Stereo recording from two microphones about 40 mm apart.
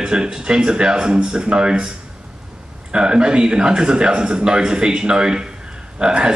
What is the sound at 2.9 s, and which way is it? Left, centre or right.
A man's voice, right.